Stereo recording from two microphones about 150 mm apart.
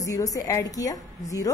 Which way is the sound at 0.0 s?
25° left (ahead or behind).